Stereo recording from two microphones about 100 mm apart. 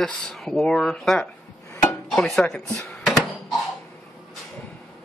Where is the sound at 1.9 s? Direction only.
5° left (ahead or behind).